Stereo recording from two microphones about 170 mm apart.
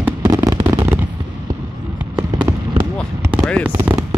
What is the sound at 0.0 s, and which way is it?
Fireworks, 20° right (ahead or behind).